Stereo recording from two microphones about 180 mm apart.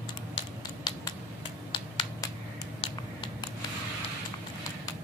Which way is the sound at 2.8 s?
25° left (ahead or behind).